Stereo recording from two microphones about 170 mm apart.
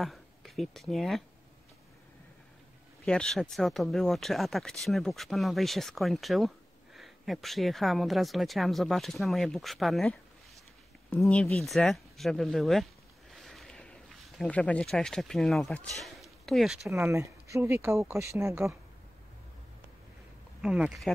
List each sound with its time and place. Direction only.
0.0 s speech: centre (ahead or behind)
3.1 s speech: 5° left (ahead or behind)
13.3 s a sound: centre (ahead or behind)
16.9 s speech: 15° right (ahead or behind)
20.6 s speech: 5° right (ahead or behind)